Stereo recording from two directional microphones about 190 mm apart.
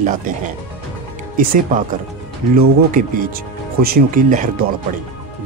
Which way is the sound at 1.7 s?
45° right (ahead or behind).